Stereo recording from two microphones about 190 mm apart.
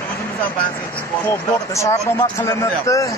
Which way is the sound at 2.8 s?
15° left (ahead or behind).